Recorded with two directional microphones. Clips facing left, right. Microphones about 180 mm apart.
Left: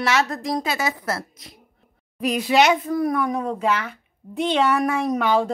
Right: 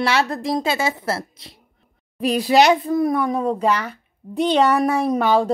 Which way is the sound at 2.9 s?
25° right (ahead or behind).